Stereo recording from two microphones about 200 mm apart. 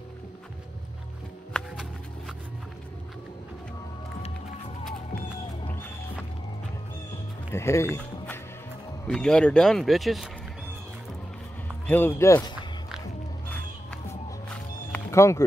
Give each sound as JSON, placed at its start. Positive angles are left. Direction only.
{"t": 1.5, "sound": "music", "side_deg": 0}
{"t": 7.5, "sound": "speech", "side_deg": 15}
{"t": 9.0, "sound": "speech", "side_deg": 5}
{"t": 11.8, "sound": "music", "side_deg": 10}
{"t": 12.2, "sound": "speech", "side_deg": 15}
{"t": 14.5, "sound": "music", "side_deg": 10}